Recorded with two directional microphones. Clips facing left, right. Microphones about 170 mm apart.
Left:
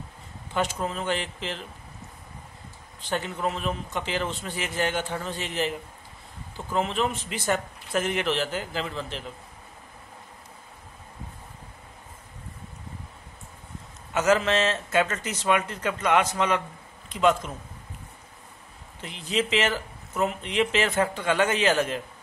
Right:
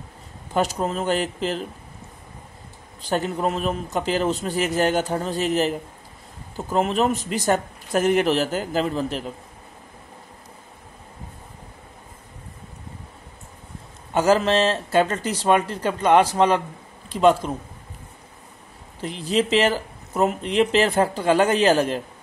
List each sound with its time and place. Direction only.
0.5 s speech: 40° right (ahead or behind)
3.0 s speech: 40° right (ahead or behind)
14.1 s speech: 35° right (ahead or behind)
18.9 s speech: 40° right (ahead or behind)